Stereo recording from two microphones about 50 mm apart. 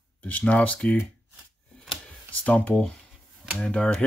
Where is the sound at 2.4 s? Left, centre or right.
Left.